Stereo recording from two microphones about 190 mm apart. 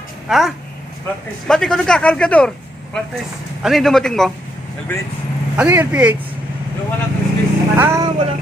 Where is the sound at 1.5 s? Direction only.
5° left (ahead or behind).